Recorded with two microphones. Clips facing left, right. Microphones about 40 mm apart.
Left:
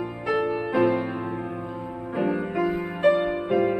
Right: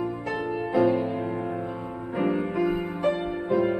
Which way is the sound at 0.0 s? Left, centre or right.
Left.